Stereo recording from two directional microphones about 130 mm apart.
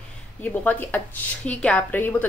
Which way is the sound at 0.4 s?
15° left (ahead or behind).